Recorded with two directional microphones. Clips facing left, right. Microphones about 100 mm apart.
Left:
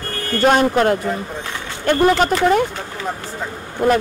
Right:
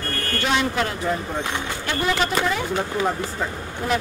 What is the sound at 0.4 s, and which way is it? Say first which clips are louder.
A woman's voice: left 9 dB; 45° left (ahead or behind).